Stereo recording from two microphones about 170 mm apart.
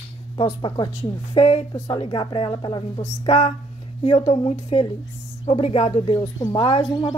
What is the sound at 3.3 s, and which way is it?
A woman's voice, 40° left (ahead or behind).